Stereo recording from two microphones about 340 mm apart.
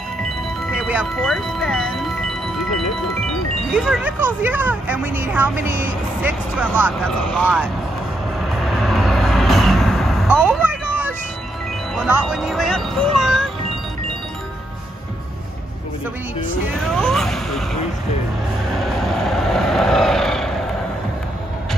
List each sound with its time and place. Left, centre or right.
0.7 s chime: centre
3.7 s a woman's voice: centre
8.5 s vehicle: centre
11.9 s speech: centre
16.6 s speech: centre
18.8 s vehicle: centre